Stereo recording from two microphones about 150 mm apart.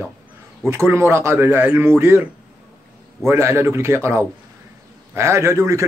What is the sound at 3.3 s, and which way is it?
A man's voice, 20° right (ahead or behind).